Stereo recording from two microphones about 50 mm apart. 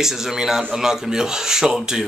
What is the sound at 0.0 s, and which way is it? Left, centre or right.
Speech, centre.